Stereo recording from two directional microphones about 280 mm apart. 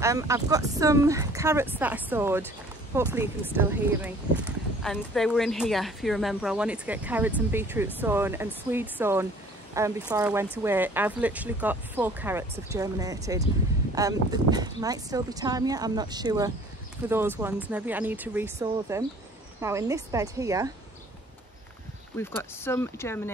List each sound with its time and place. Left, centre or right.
0.0 s speech: centre
22.1 s speech: centre